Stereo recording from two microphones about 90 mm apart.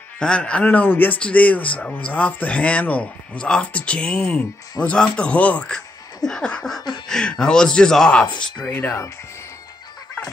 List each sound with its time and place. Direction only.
0.2 s speech: 10° left (ahead or behind)
8.7 s speech: 20° left (ahead or behind)